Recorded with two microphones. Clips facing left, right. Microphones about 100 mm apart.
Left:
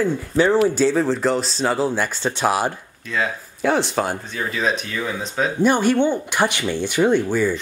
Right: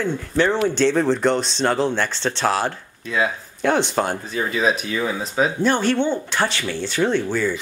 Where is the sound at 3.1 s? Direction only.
Centre (ahead or behind).